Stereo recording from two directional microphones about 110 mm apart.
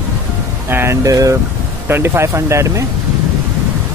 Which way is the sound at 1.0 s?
30° right (ahead or behind).